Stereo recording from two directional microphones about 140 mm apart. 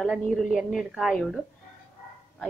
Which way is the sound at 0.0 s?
Centre (ahead or behind).